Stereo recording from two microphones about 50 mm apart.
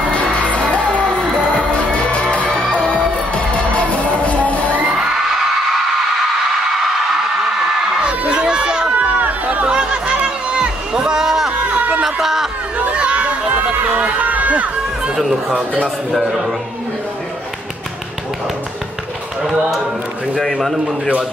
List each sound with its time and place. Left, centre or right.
0.1 s music: left
0.9 s music: right
1.7 s music: left
8.0 s crowd: right
8.9 s chatter: right
9.7 s music: centre
11.7 s a sound: right
12.0 s a sound: centre
12.7 s a sound: right
13.7 s run: right
15.1 s music: centre
16.1 s a man's voice: centre
20.3 s a man's voice: centre